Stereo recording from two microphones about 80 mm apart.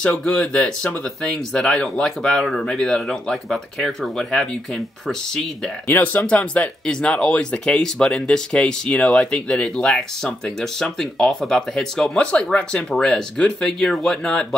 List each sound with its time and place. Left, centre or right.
0.0 s speech: centre
5.9 s speech: centre